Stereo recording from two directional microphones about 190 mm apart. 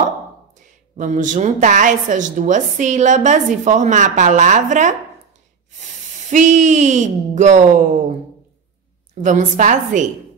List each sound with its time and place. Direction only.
0.9 s a woman's voice: 40° right (ahead or behind)
6.3 s a woman's voice: 40° right (ahead or behind)
9.2 s a woman's voice: 40° right (ahead or behind)